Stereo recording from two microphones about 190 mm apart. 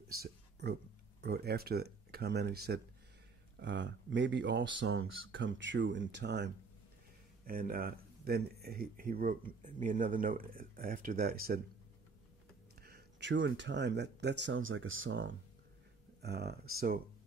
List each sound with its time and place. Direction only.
0.1 s a sound: 55° right (ahead or behind)
1.2 s speech: 55° right (ahead or behind)
3.5 s speech: 65° right (ahead or behind)
7.4 s speech: 50° right (ahead or behind)
12.8 s speech: 60° right (ahead or behind)
16.2 s speech: 60° right (ahead or behind)